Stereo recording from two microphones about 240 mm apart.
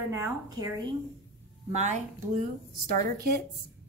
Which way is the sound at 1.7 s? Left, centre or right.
Right.